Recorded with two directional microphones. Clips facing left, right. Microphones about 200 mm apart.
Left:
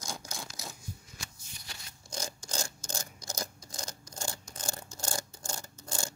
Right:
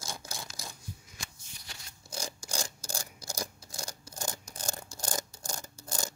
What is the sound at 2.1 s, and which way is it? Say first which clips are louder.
Rub: even; 10° right (ahead or behind).